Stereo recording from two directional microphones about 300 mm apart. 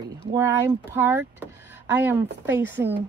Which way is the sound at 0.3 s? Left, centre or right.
Centre.